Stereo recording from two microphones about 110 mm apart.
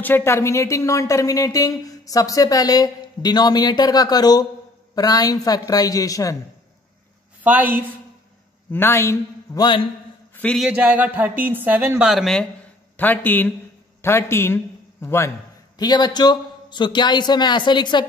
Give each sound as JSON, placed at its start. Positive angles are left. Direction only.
{"t": 0.0, "sound": "speech", "side_deg": 20}
{"t": 7.4, "sound": "music", "side_deg": -15}
{"t": 8.7, "sound": "a man's voice", "side_deg": 20}
{"t": 9.6, "sound": "a man's voice", "side_deg": 45}
{"t": 10.7, "sound": "music", "side_deg": -15}
{"t": 12.0, "sound": "speech", "side_deg": -5}
{"t": 12.9, "sound": "a man's voice", "side_deg": 15}
{"t": 15.8, "sound": "a man's voice", "side_deg": 40}